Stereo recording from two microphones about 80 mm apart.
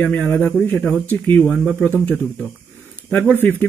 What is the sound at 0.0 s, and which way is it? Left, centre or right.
Speech, centre.